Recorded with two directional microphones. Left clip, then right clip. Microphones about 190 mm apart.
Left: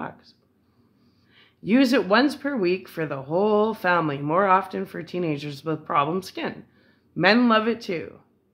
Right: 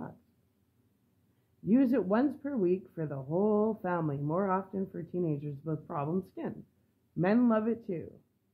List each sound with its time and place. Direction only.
1.7 s speech: 5° left (ahead or behind)